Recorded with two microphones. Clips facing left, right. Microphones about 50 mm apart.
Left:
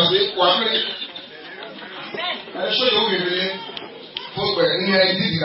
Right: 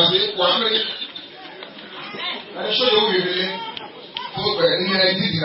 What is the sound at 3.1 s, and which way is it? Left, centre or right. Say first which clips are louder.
Speech: right 1 dB; left.